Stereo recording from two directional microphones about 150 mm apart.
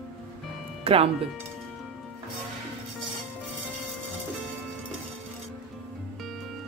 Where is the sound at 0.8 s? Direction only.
40° right (ahead or behind).